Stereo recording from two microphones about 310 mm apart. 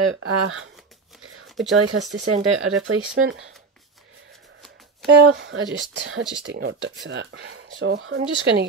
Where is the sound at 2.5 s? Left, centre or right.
Right.